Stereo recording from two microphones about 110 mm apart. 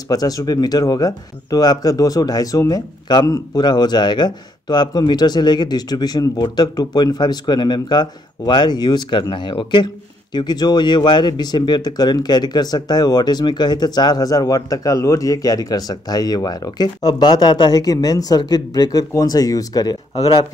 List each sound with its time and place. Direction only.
0.1 s speech: 35° left (ahead or behind)